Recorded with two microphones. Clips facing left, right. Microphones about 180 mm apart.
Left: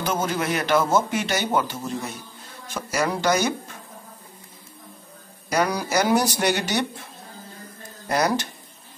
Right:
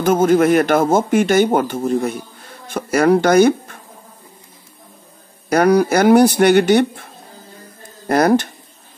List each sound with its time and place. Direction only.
0.0 s speech: 50° right (ahead or behind)
5.5 s speech: 55° right (ahead or behind)
8.1 s speech: 55° right (ahead or behind)